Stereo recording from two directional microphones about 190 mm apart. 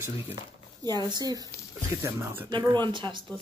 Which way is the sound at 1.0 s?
20° right (ahead or behind).